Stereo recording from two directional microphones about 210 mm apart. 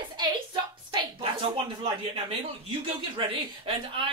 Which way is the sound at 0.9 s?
25° right (ahead or behind).